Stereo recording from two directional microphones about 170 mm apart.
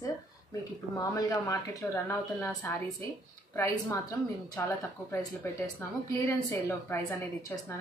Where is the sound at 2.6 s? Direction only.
15° left (ahead or behind).